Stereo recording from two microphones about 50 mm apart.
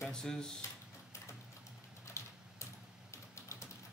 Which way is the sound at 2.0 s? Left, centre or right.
Left.